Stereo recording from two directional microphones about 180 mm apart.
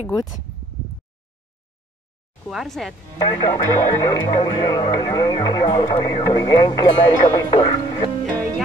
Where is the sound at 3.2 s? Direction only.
25° left (ahead or behind).